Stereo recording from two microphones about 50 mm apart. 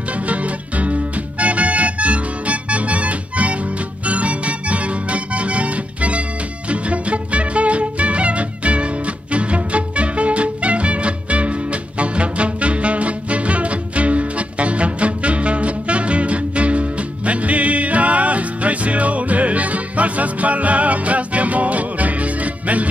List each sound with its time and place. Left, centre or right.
0.1 s music: right